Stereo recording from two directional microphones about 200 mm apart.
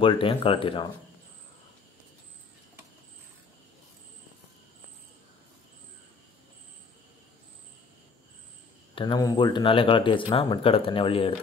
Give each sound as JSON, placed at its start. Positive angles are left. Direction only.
{"t": 0.0, "sound": "speech", "side_deg": 25}
{"t": 8.9, "sound": "speech", "side_deg": 20}